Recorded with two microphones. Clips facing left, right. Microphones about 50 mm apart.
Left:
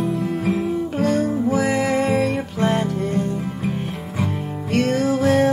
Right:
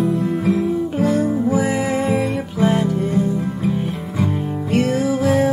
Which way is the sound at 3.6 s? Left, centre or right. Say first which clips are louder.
Right 4 dB; left.